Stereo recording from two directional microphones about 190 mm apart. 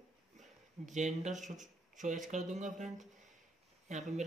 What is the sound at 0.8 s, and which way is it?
Speech, 40° right (ahead or behind).